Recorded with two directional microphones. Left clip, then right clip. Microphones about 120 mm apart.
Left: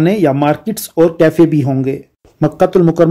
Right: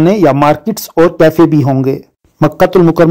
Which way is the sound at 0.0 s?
30° right (ahead or behind).